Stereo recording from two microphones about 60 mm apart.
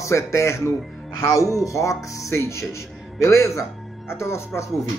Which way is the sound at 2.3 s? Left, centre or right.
Left.